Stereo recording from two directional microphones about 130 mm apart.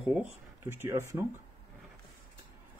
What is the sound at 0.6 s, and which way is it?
Speech, 20° right (ahead or behind).